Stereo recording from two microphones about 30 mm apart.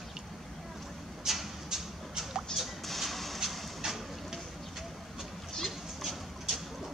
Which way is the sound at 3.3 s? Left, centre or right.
Centre.